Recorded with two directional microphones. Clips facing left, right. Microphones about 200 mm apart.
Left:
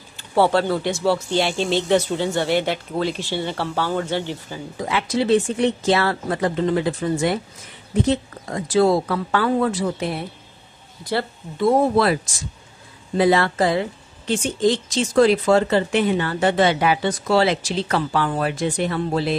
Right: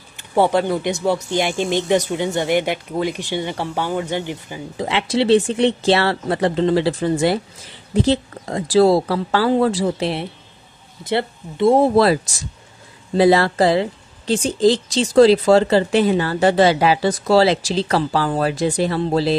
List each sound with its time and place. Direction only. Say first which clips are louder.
0.3 s speech: right 1 dB; 15° right (ahead or behind)
4.7 s speech: right 3 dB; 30° right (ahead or behind)